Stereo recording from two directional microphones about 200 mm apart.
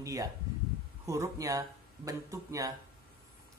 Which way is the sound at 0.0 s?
15° right (ahead or behind).